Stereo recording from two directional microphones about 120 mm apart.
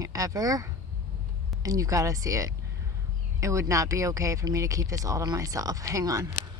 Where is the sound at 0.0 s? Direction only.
30° right (ahead or behind).